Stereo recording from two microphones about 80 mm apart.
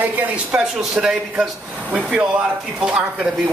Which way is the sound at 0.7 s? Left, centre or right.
Centre.